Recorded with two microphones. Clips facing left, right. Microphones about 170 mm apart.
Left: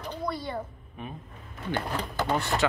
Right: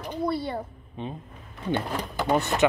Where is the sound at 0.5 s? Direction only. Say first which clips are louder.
Right 2 dB; 25° right (ahead or behind).